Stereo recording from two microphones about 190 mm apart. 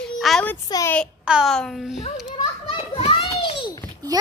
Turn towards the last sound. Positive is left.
turn(degrees=-20)  # may be behind; listen again after turning